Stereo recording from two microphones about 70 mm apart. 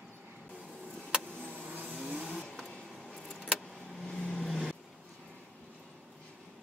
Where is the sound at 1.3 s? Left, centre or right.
Centre.